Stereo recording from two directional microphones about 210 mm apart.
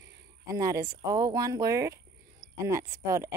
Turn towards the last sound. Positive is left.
turn(degrees=-15)  # may be behind; listen again after turning